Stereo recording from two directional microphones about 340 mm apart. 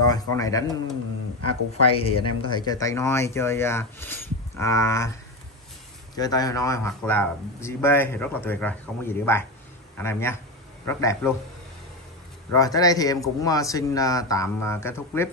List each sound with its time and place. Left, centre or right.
0.1 s a man's voice: centre
2.0 s a man's voice: centre
6.1 s a man's voice: centre
12.5 s a man's voice: centre